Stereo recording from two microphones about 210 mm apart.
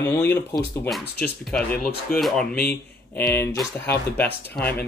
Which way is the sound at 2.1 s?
Centre (ahead or behind).